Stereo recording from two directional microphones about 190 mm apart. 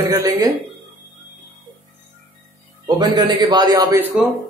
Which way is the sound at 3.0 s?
25° right (ahead or behind).